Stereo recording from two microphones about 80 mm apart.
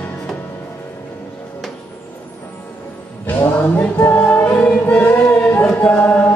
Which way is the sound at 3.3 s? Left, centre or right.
Left.